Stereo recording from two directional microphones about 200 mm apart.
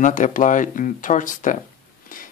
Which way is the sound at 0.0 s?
40° left (ahead or behind).